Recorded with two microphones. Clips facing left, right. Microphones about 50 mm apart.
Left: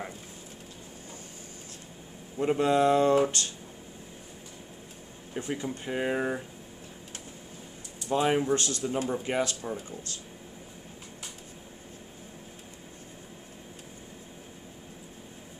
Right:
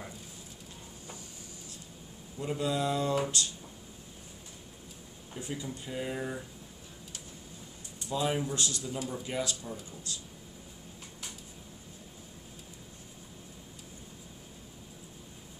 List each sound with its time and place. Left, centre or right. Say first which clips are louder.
2.3 s speech: left 8 dB; left
5.3 s speech: left 6 dB; left
8.1 s speech: left 6 dB; left